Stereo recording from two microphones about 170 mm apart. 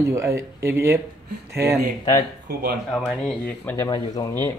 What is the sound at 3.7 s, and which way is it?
Speech, 20° left (ahead or behind).